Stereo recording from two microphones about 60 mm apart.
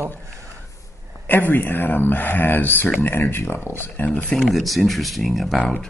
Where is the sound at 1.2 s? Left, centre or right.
Left.